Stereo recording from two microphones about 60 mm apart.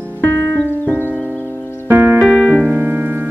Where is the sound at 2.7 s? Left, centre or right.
Right.